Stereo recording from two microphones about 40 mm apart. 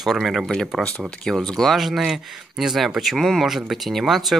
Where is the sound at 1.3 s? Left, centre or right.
Centre.